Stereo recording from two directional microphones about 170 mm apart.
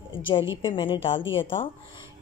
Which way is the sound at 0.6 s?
30° left (ahead or behind).